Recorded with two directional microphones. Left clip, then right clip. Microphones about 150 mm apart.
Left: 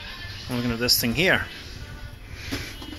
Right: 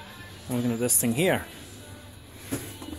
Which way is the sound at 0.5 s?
10° right (ahead or behind).